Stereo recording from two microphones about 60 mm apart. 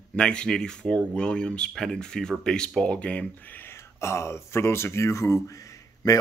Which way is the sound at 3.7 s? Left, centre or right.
Left.